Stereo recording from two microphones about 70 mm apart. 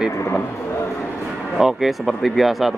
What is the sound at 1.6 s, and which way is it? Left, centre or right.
Cattle, centre.